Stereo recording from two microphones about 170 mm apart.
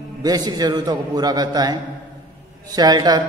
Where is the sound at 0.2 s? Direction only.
25° right (ahead or behind).